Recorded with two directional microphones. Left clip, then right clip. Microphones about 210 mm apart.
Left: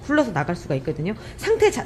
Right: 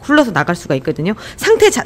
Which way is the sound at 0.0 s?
40° right (ahead or behind).